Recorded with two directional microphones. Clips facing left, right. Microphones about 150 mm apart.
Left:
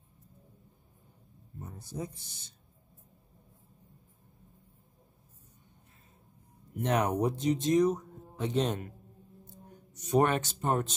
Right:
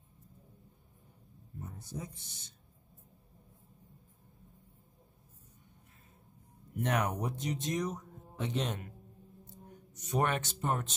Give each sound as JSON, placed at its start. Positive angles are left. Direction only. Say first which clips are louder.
{"t": 2.0, "sound": "speech", "louder": "left 5 dB", "side_deg": 30}
{"t": 6.8, "sound": "speech", "louder": "left 5 dB", "side_deg": 25}
{"t": 10.1, "sound": "speech", "louder": "left 6 dB", "side_deg": 35}